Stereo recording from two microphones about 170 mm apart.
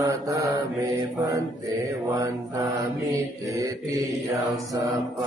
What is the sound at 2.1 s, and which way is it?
Mantra, 20° right (ahead or behind).